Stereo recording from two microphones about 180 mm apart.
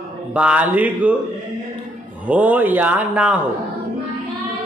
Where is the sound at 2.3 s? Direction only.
10° right (ahead or behind).